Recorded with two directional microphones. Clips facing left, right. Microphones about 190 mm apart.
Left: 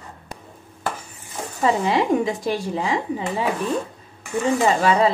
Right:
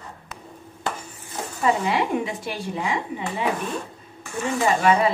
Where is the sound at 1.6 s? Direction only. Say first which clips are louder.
Left 3 dB; 30° left (ahead or behind).